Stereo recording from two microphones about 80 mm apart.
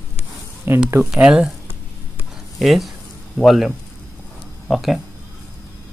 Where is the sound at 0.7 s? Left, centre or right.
Right.